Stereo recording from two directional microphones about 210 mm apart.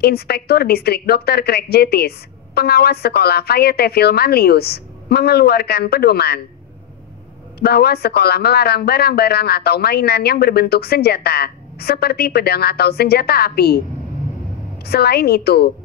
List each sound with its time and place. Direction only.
0.0 s a woman's voice: 50° left (ahead or behind)
7.6 s a woman's voice: 50° left (ahead or behind)
14.9 s a woman's voice: 50° left (ahead or behind)